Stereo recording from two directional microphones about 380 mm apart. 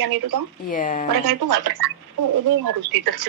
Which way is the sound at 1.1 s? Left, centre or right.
Right.